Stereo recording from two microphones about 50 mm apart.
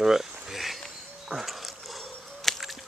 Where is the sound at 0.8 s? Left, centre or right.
Centre.